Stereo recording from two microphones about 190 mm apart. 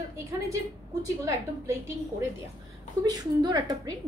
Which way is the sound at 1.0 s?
15° right (ahead or behind).